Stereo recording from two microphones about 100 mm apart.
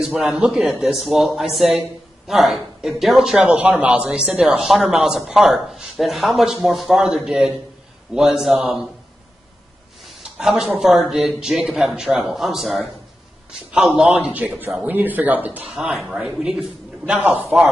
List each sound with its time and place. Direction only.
0.0 s a man's voice: 5° right (ahead or behind)
10.0 s a sound: centre (ahead or behind)
10.8 s a man's voice: 5° right (ahead or behind)
14.3 s speech: 20° right (ahead or behind)
17.2 s a man's voice: 20° right (ahead or behind)